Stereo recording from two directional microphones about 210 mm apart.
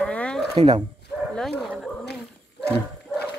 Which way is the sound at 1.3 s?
Centre (ahead or behind).